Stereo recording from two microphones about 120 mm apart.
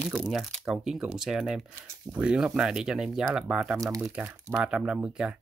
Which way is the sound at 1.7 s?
25° right (ahead or behind).